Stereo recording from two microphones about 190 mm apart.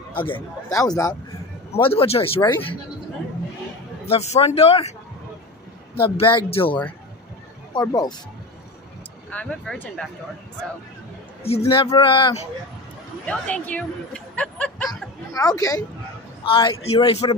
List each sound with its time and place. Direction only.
0.2 s a man's voice: 20° left (ahead or behind)
1.7 s a man's voice: 30° left (ahead or behind)
4.0 s speech: 35° left (ahead or behind)
5.9 s a man's voice: 30° left (ahead or behind)
9.3 s speech: 5° left (ahead or behind)
11.7 s a man's voice: 25° left (ahead or behind)
13.2 s speech: 5° left (ahead or behind)
15.3 s a man's voice: 20° left (ahead or behind)